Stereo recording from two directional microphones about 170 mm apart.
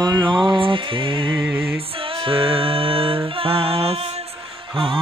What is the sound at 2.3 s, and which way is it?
Music, 30° right (ahead or behind).